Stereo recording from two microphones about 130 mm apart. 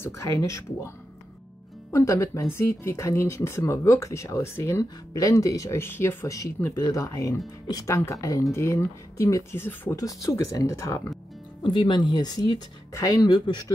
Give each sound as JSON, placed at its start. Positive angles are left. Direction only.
{"t": 0.0, "sound": "speech", "side_deg": 20}
{"t": 11.6, "sound": "speech", "side_deg": 35}